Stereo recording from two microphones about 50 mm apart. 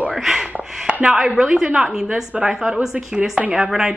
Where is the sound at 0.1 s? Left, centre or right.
Centre.